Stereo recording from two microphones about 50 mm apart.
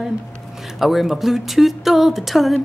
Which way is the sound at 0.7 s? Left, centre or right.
Centre.